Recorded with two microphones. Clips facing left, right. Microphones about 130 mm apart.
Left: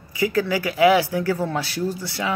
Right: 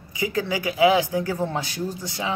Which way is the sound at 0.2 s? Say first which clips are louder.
Left 4 dB; 20° right (ahead or behind).